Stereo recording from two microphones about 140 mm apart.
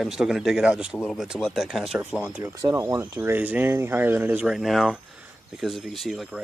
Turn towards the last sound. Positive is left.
turn(degrees=0)  # may be behind; listen again after turning